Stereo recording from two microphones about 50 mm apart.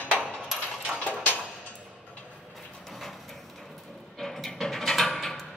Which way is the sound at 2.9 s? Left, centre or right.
Centre.